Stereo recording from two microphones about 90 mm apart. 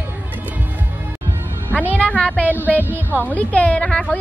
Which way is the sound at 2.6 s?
20° right (ahead or behind).